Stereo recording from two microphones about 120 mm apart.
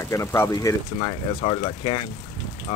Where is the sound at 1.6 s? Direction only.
45° left (ahead or behind).